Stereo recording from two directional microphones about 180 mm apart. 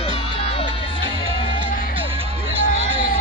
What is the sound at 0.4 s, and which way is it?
Music, 35° left (ahead or behind).